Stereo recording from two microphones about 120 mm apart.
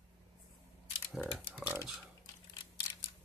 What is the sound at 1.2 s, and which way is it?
Typing, 15° right (ahead or behind).